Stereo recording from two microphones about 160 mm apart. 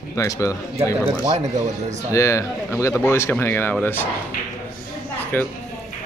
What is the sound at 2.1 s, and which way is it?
Speech, 20° left (ahead or behind).